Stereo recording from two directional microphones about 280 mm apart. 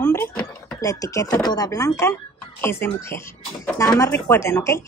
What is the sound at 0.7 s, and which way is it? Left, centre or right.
A woman's voice, centre.